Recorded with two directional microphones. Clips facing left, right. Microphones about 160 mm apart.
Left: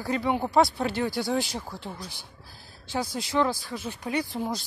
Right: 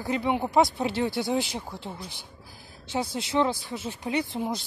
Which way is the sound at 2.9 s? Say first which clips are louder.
Right 1 dB; 25° right (ahead or behind).